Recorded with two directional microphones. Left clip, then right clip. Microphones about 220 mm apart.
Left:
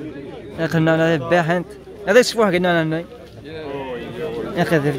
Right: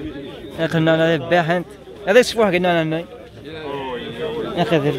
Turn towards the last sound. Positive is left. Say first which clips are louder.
# even
turn(degrees=0)  # may be behind; listen again after turning